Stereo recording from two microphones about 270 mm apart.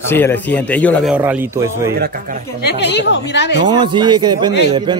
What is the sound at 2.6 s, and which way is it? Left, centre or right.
Speech, left.